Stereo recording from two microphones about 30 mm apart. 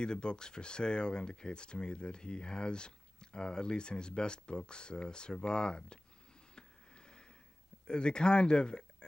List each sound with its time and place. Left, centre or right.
0.0 s speech: left
6.5 s a sound: left
7.8 s speech: left